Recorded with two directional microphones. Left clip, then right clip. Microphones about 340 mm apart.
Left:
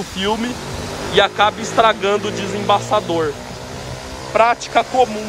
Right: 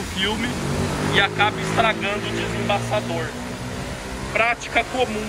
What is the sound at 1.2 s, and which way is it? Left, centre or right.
Speech, centre.